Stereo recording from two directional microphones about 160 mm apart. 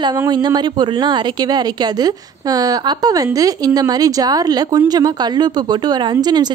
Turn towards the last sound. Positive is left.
turn(degrees=-25)  # may be behind; listen again after turning